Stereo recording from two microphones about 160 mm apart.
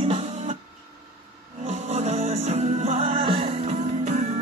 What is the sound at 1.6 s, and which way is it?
Music, 45° right (ahead or behind).